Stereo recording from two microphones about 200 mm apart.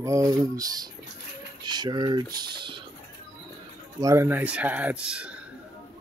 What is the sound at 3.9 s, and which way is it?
Speech, 15° right (ahead or behind).